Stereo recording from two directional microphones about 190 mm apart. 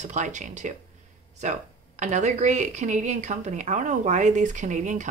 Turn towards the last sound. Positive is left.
turn(degrees=-40)  # may be behind; listen again after turning